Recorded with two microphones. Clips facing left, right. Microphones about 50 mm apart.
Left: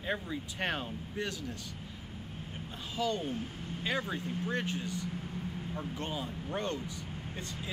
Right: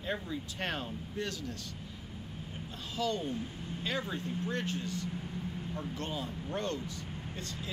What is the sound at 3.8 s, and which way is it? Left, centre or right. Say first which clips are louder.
Speech: left 2 dB; left.